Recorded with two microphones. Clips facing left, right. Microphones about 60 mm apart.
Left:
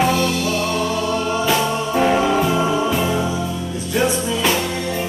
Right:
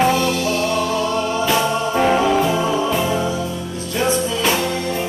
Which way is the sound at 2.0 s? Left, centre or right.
Centre.